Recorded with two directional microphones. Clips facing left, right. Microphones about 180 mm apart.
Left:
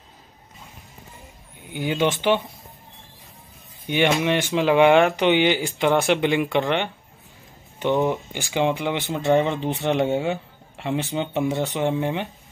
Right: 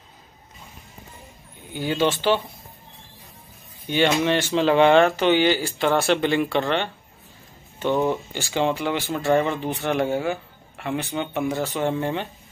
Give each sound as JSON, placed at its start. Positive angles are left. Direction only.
{"t": 1.7, "sound": "speech", "side_deg": 15}
{"t": 3.8, "sound": "speech", "side_deg": 15}